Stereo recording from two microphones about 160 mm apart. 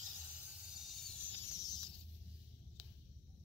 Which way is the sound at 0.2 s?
10° right (ahead or behind).